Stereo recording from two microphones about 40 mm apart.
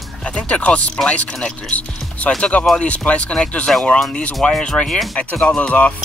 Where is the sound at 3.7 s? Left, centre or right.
Centre.